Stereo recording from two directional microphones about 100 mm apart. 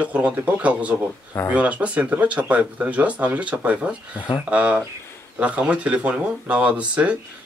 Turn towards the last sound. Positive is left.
turn(degrees=-15)  # may be behind; listen again after turning